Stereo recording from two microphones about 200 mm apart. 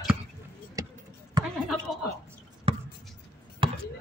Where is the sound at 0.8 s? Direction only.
15° right (ahead or behind).